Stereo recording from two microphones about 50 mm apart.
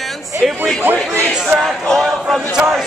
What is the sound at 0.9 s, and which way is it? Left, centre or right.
Speech, right.